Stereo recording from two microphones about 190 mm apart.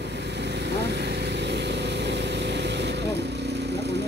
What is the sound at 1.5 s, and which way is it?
Vehicle, 65° right (ahead or behind).